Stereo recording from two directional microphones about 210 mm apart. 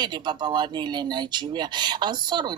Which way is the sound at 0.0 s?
20° right (ahead or behind).